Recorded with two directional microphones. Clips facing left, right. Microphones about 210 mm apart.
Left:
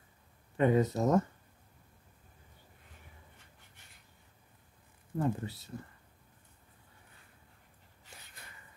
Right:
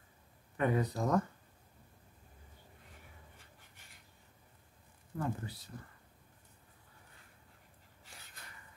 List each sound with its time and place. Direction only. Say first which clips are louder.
0.6 s speech: left 5 dB; 25° left (ahead or behind)
5.1 s speech: left 5 dB; 25° left (ahead or behind)